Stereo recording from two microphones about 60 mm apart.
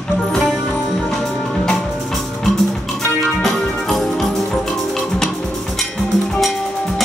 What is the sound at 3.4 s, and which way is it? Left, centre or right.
Music, centre.